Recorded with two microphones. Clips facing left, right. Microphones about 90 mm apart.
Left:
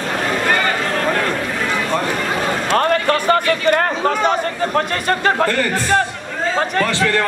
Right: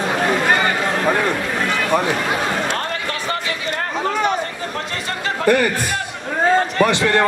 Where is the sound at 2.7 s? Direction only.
55° left (ahead or behind).